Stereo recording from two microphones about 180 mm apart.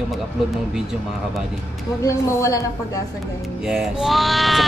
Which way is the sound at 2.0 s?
20° left (ahead or behind).